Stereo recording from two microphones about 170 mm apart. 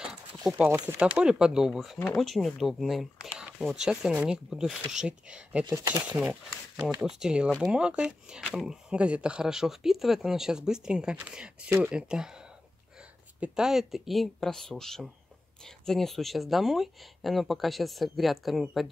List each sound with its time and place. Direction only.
0.0 s horse: 5° right (ahead or behind)
0.7 s speech: 15° right (ahead or behind)
0.9 s speech: 5° right (ahead or behind)
13.4 s speech: 5° right (ahead or behind)